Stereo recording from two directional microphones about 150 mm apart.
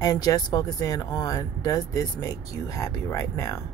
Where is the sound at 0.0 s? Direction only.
25° left (ahead or behind).